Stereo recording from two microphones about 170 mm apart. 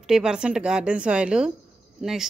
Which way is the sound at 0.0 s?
5° right (ahead or behind).